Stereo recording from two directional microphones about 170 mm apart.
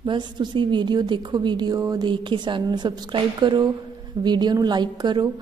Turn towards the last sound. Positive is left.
turn(degrees=-25)  # may be behind; listen again after turning